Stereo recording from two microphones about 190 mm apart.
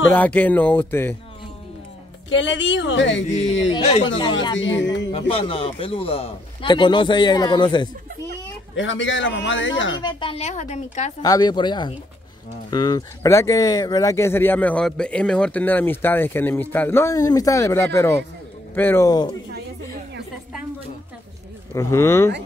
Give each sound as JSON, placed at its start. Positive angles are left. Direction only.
{"t": 0.1, "sound": "speech", "side_deg": 10}
{"t": 2.2, "sound": "a man's voice", "side_deg": 75}
{"t": 3.7, "sound": "a woman's voice", "side_deg": 30}
{"t": 4.6, "sound": "a man's voice", "side_deg": 75}
{"t": 5.3, "sound": "a man's voice", "side_deg": 30}
{"t": 8.7, "sound": "a man's voice", "side_deg": 75}
{"t": 9.9, "sound": "a woman's voice", "side_deg": 25}
{"t": 11.2, "sound": "a man's voice", "side_deg": 20}
{"t": 21.7, "sound": "speech", "side_deg": 15}